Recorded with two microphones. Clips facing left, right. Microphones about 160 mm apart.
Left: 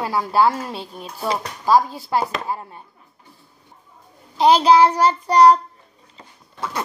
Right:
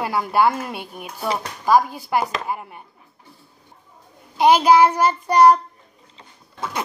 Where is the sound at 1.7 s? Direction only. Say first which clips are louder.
Even; 15° right (ahead or behind).